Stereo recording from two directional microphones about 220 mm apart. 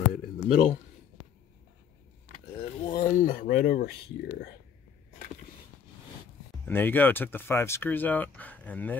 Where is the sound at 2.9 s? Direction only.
35° left (ahead or behind).